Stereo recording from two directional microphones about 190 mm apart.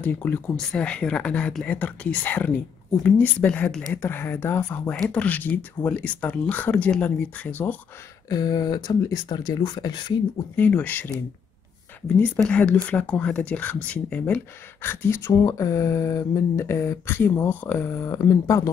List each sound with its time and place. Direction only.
0.0 s speech: 5° left (ahead or behind)
8.3 s speech: 20° left (ahead or behind)
10.5 s speech: 10° left (ahead or behind)
12.2 s speech: 10° left (ahead or behind)